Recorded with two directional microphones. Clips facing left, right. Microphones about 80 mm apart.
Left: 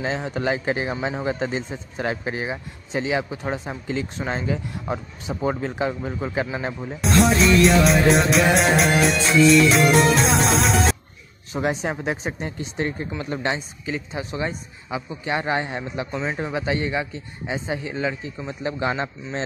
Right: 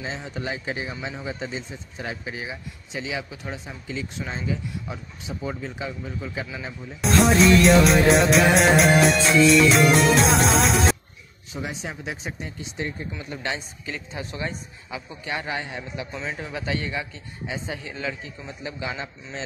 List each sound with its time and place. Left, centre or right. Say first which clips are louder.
0.0 s speech: left 7 dB; left
2.3 s speech: left 6 dB; left
7.0 s music: even; centre
11.5 s speech: left 8 dB; left
12.4 s speech: left 5 dB; left
13.8 s a man's voice: left 6 dB; centre
18.6 s speech: left 7 dB; left